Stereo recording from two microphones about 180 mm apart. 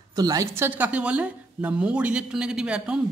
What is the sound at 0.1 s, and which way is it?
A woman's voice, 20° right (ahead or behind).